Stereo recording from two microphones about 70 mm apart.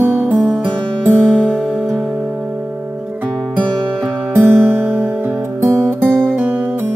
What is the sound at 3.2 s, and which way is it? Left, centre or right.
Music, centre.